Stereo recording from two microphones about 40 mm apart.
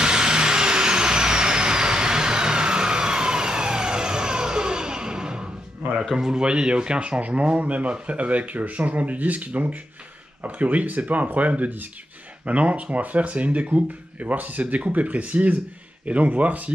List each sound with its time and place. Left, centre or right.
0.0 s vehicle: right
6.1 s speech: centre; by 14.3 s right
14.3 s speech: right